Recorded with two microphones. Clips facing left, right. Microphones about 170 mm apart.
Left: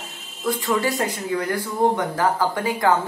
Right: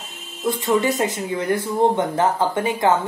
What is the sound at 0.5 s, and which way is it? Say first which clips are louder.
Speech: right 3 dB; 20° right (ahead or behind).